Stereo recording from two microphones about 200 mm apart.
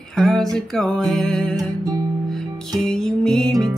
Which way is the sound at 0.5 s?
Centre (ahead or behind).